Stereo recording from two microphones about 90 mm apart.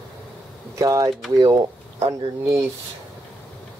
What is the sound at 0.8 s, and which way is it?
Speech, 40° right (ahead or behind).